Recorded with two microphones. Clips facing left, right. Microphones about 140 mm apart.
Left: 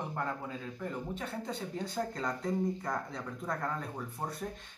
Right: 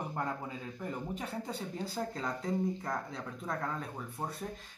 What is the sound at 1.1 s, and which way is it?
Speech, 10° right (ahead or behind).